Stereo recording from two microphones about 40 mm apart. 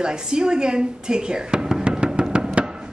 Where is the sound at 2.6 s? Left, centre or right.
Right.